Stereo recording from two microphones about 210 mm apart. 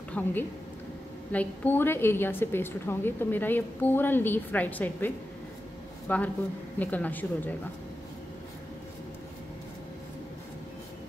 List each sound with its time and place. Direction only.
0.1 s a woman's voice: 10° left (ahead or behind)